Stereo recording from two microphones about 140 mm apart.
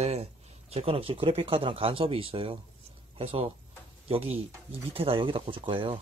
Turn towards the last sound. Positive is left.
turn(degrees=-40)  # may be behind; listen again after turning